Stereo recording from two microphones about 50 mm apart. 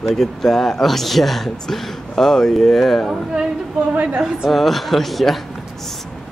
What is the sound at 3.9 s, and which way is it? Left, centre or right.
Speech, right.